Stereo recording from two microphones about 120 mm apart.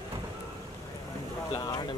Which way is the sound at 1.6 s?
35° left (ahead or behind).